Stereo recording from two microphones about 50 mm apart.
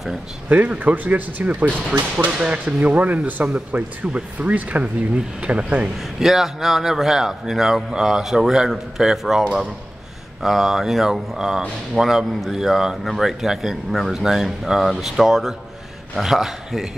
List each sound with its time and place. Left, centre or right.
0.5 s speech: right
5.9 s a man's voice: centre
13.0 s speech: centre